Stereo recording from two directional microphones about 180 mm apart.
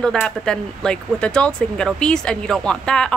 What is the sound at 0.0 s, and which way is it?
Speech, 5° left (ahead or behind).